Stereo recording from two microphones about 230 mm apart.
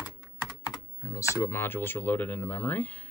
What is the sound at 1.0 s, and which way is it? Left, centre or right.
Speech, centre.